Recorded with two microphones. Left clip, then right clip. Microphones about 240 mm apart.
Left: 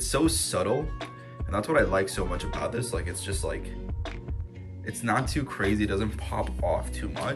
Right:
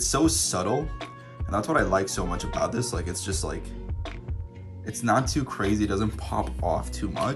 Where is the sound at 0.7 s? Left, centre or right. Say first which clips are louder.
Right 1 dB; centre.